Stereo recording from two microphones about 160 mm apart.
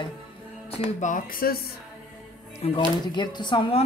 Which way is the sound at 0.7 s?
50° left (ahead or behind).